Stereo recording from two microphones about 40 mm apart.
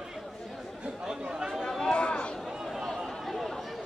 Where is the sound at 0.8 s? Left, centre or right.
Right.